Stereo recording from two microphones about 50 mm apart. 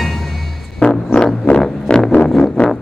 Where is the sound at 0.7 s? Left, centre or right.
Left.